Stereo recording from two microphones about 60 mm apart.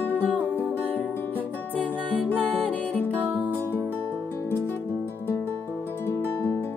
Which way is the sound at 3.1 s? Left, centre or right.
Right.